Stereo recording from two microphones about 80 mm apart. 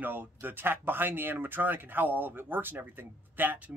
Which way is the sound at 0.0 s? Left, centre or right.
Right.